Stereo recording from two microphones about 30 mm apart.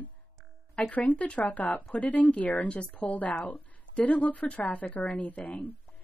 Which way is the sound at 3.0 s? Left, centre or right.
Left.